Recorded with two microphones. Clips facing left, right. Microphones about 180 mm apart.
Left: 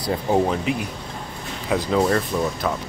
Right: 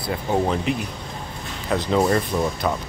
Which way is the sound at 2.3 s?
10° right (ahead or behind).